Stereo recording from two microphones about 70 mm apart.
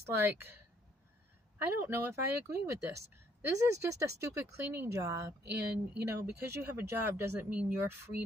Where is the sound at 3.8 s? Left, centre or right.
Right.